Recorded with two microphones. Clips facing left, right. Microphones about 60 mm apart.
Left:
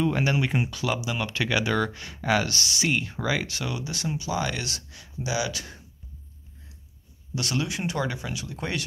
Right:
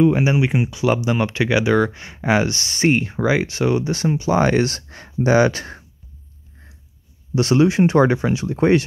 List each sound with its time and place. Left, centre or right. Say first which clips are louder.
0.0 s speech: right 8 dB; centre
0.8 s speech: right 9 dB; right
7.3 s speech: right 14 dB; right